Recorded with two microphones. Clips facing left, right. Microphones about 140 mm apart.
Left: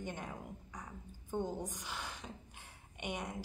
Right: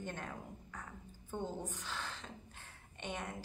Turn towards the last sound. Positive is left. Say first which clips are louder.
# left 2 dB
turn(degrees=15)  # may be behind; listen again after turning